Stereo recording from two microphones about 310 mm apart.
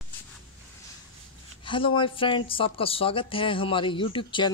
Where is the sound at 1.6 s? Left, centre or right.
Centre.